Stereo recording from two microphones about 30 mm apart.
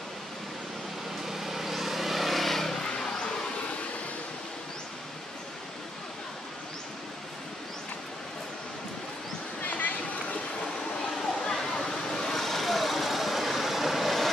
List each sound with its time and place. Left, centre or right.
1.2 s vehicle: centre
2.8 s vehicle: left
9.6 s a sound: left
11.7 s vehicle: left; by 14.3 s centre